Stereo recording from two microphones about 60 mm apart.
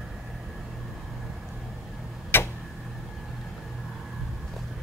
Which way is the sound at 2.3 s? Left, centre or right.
Left.